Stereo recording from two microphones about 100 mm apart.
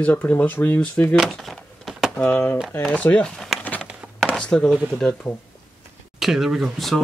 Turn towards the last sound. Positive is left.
turn(degrees=0)  # may be behind; listen again after turning